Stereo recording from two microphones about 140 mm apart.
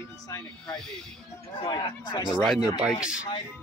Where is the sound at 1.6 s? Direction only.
25° left (ahead or behind).